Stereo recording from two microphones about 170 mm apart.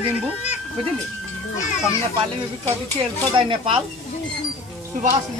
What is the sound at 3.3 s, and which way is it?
Speech, 30° right (ahead or behind).